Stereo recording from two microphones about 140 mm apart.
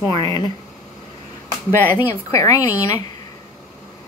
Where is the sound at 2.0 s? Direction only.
15° left (ahead or behind).